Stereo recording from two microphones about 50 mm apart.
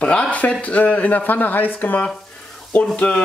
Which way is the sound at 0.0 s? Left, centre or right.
Left.